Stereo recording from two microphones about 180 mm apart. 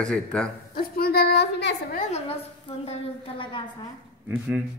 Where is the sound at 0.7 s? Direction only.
60° left (ahead or behind).